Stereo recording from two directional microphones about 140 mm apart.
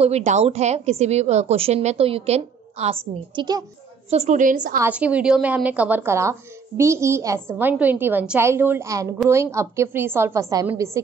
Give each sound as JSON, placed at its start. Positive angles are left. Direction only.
{"t": 0.0, "sound": "a woman's voice", "side_deg": -55}
{"t": 3.3, "sound": "a woman's voice", "side_deg": -30}
{"t": 4.1, "sound": "a woman's voice", "side_deg": -55}
{"t": 4.7, "sound": "a woman's voice", "side_deg": -10}